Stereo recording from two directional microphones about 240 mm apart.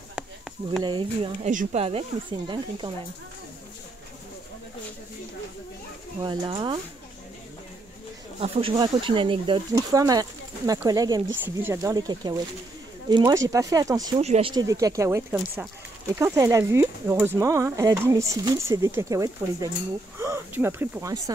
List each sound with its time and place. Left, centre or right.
0.8 s speech: right
6.2 s speech: centre
8.4 s speech: right